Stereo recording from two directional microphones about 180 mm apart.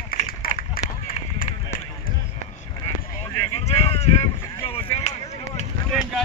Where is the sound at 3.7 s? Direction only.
35° left (ahead or behind).